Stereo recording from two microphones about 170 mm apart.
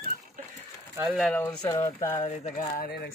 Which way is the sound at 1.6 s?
20° left (ahead or behind).